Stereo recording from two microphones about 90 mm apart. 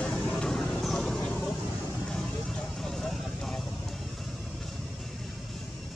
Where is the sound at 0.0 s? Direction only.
15° left (ahead or behind).